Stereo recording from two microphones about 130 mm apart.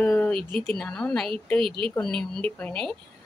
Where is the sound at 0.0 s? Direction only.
10° left (ahead or behind).